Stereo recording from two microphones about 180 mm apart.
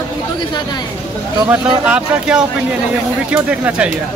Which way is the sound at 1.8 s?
5° right (ahead or behind).